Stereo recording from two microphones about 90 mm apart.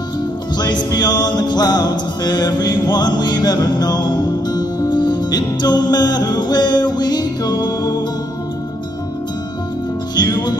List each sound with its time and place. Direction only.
0.6 s music: 50° left (ahead or behind)
10.1 s music: 50° left (ahead or behind)